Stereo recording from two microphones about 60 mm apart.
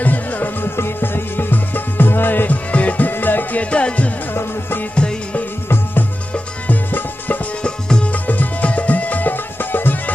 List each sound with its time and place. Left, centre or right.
0.0 s music: left
3.7 s music: left
4.3 s music: left
4.9 s music: centre
6.3 s music: left
7.6 s music: centre; by 10.1 s left